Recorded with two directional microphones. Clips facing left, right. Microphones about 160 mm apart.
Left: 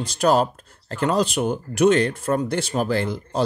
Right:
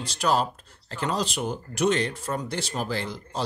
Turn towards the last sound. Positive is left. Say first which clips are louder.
# left 8 dB
turn(degrees=55)  # may be behind; listen again after turning